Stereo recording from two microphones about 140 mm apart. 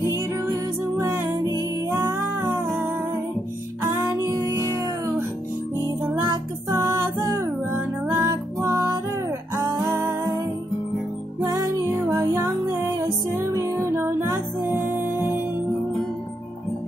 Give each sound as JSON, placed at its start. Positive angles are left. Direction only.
{"t": 0.1, "sound": "music", "side_deg": -20}
{"t": 3.8, "sound": "music", "side_deg": -15}
{"t": 6.2, "sound": "music", "side_deg": -25}
{"t": 11.4, "sound": "music", "side_deg": -25}